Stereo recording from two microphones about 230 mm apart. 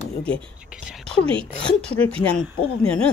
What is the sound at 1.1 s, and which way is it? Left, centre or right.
Speech, right.